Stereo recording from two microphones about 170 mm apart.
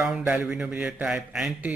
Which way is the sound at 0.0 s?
5° right (ahead or behind).